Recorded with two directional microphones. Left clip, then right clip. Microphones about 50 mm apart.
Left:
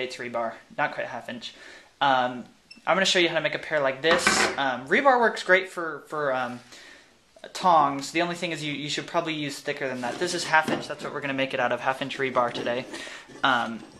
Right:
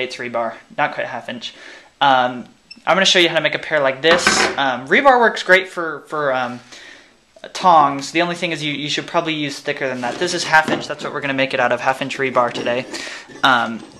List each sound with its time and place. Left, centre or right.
0.0 s speech: right
4.1 s speech: right